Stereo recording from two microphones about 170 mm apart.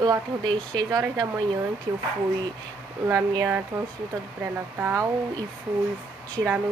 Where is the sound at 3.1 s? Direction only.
20° right (ahead or behind).